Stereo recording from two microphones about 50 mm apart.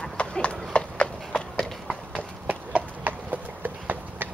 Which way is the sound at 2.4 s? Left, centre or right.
Right.